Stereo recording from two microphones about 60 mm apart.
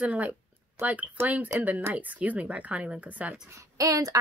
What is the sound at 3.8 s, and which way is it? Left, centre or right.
Speech, right.